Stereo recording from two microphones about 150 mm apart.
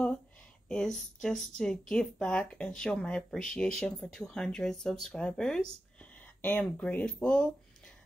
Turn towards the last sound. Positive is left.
turn(degrees=5)  # may be behind; listen again after turning